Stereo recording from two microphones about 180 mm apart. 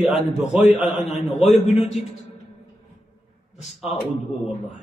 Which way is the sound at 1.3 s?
40° left (ahead or behind).